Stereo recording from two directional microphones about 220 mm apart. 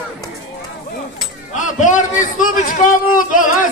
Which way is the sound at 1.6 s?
35° left (ahead or behind).